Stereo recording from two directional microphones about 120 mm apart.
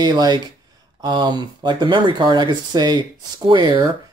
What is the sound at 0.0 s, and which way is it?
Speech, 35° right (ahead or behind).